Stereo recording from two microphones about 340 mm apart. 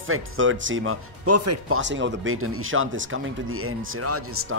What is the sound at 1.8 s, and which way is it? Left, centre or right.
Speech, right.